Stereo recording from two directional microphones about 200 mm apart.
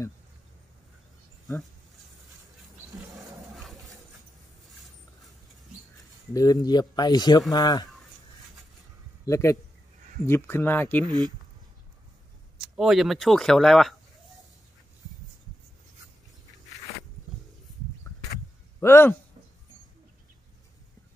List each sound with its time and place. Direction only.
3.5 s a sound: centre (ahead or behind)
6.3 s speech: 20° left (ahead or behind)
9.2 s speech: 15° left (ahead or behind)
11.1 s speech: 20° right (ahead or behind)
12.5 s speech: centre (ahead or behind)
18.8 s a man's voice: 10° left (ahead or behind)